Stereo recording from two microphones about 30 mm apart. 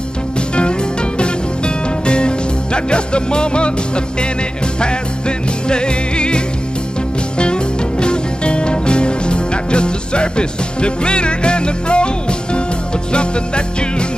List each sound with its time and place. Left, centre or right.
0.6 s music: left
5.7 s music: left